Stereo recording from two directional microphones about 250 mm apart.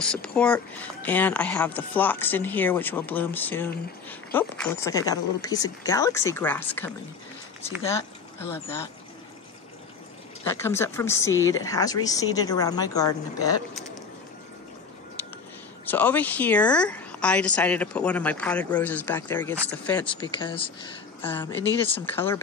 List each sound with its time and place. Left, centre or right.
0.0 s speech: centre
10.4 s speech: centre
15.8 s a woman's voice: centre
20.1 s speech: centre
22.0 s speech: centre